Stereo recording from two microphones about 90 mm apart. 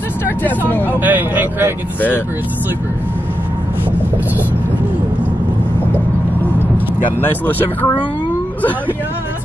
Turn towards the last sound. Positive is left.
turn(degrees=20)  # may be behind; listen again after turning